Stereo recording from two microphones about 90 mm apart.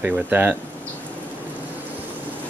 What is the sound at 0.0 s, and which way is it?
Speech, 20° right (ahead or behind).